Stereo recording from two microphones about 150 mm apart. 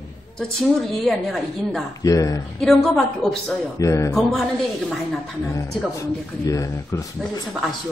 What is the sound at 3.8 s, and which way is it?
Speech, 20° left (ahead or behind).